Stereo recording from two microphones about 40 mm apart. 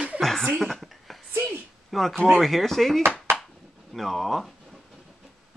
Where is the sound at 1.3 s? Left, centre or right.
Right.